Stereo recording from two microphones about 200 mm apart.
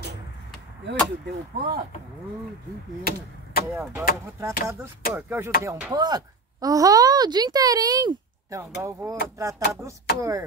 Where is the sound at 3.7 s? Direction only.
15° right (ahead or behind).